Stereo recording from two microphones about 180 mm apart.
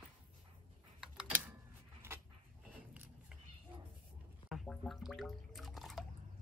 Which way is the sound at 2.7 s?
5° right (ahead or behind).